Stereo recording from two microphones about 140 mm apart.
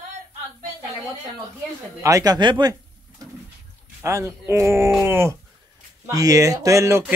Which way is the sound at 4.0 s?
20° right (ahead or behind).